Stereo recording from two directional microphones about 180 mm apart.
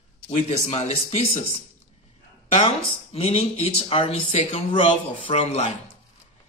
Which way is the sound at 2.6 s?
30° left (ahead or behind).